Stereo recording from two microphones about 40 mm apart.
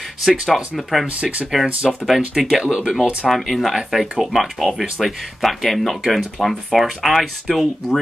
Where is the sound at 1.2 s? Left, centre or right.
Right.